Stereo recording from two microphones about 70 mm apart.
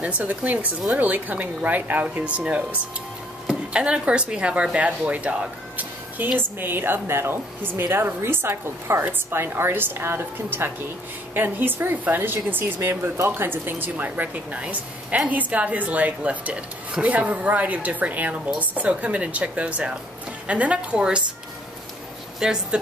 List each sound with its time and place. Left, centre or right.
0.2 s a woman's voice: right
22.4 s a woman's voice: centre